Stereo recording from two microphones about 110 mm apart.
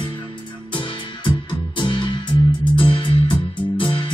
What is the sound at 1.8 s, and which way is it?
Music, 45° left (ahead or behind).